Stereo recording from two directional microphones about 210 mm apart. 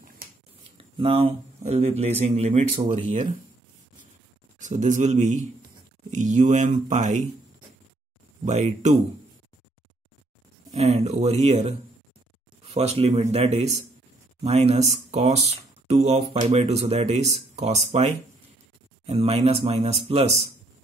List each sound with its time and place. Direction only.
0.7 s speech: 25° right (ahead or behind)
4.6 s speech: 35° right (ahead or behind)
8.5 s speech: 35° right (ahead or behind)
10.7 s speech: 30° right (ahead or behind)